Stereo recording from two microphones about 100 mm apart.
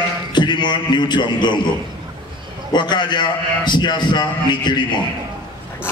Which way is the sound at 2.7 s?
50° left (ahead or behind).